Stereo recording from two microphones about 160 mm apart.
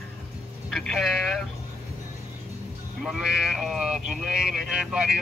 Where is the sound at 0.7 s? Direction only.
Centre (ahead or behind).